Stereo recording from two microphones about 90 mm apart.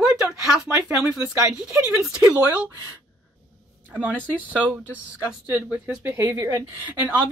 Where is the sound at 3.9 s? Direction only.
15° right (ahead or behind).